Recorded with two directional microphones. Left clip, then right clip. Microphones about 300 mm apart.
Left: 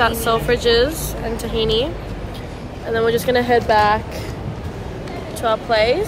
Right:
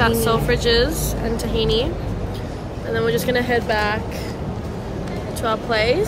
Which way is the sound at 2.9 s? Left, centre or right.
Centre.